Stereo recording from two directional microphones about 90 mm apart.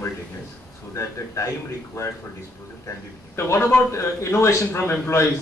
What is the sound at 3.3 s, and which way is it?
A man's voice, 30° left (ahead or behind).